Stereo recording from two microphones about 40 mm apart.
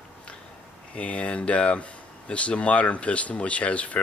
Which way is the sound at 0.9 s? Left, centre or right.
Left.